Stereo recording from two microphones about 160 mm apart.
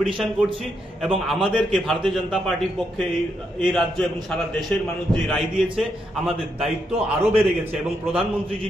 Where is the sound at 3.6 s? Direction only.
Centre (ahead or behind).